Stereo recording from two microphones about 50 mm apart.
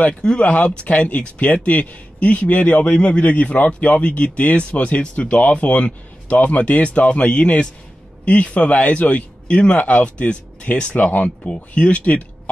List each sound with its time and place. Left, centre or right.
0.2 s speech: centre
0.5 s speech: left